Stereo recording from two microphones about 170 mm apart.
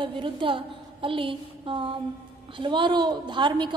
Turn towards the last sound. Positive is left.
turn(degrees=-25)  # may be behind; listen again after turning